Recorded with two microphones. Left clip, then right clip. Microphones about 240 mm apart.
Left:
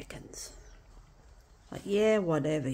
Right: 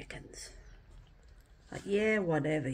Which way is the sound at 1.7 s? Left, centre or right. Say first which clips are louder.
Left 4 dB; left.